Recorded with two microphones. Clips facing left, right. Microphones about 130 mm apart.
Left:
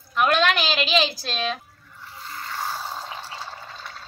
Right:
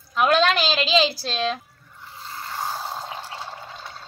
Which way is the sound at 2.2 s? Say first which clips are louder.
Right 1 dB; 20° right (ahead or behind).